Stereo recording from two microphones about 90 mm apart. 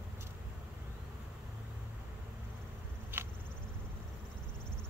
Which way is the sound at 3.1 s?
25° right (ahead or behind).